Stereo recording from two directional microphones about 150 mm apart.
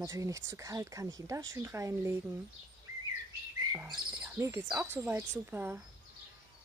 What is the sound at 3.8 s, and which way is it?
Bird, 20° right (ahead or behind).